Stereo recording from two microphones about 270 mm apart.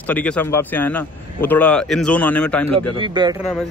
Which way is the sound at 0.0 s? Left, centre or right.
Centre.